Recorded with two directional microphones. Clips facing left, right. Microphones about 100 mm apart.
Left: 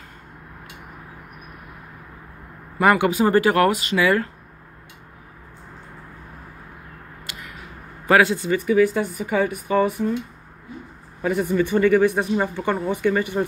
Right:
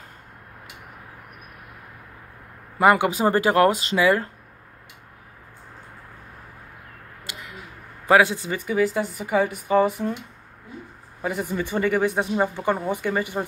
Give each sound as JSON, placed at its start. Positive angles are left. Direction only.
{"t": 2.8, "sound": "speech", "side_deg": -20}
{"t": 8.1, "sound": "speech", "side_deg": -15}
{"t": 11.2, "sound": "speech", "side_deg": -20}